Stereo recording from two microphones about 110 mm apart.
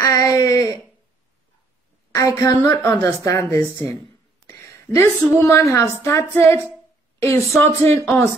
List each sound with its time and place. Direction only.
0.0 s a sound: 30° left (ahead or behind)
2.1 s a woman's voice: 30° left (ahead or behind)
2.8 s a woman's voice: 15° left (ahead or behind)
3.3 s a woman's voice: 25° left (ahead or behind)
4.5 s a sound: 25° left (ahead or behind)
5.4 s a woman's voice: 25° left (ahead or behind)